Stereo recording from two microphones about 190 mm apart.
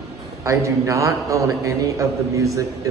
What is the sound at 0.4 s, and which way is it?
A man's voice, 15° right (ahead or behind).